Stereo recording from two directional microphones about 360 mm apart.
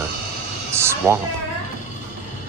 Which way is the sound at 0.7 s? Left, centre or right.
Centre.